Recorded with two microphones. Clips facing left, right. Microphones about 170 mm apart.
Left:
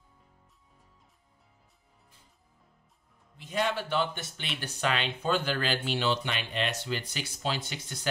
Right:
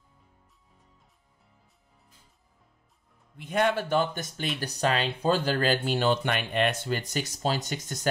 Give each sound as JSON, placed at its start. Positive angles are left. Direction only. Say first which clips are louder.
{"t": 3.3, "sound": "speech", "louder": "right 5 dB", "side_deg": -55}